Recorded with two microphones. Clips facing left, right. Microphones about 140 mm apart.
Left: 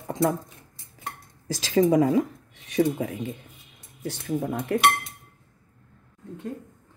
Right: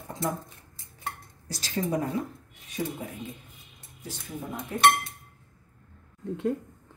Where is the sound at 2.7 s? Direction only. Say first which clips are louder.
Left 10 dB; 75° left (ahead or behind).